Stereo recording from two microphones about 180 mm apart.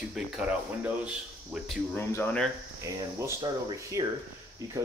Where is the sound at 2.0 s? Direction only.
15° left (ahead or behind).